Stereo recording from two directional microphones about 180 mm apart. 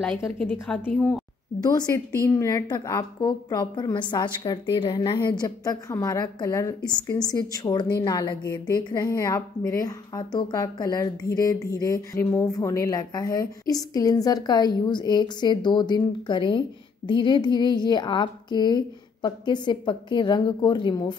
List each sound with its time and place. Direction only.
0.4 s a woman's voice: 5° left (ahead or behind)
1.6 s a woman's voice: 20° left (ahead or behind)